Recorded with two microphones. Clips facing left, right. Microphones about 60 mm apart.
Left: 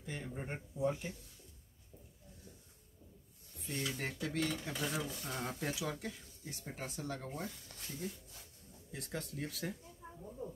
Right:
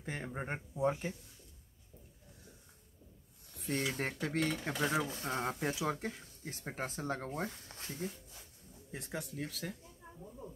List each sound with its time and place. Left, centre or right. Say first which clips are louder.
0.0 s speech: right 3 dB; right
3.5 s a sound: right 6 dB; right
3.9 s speech: right 3 dB; right
9.1 s speech: right 1 dB; centre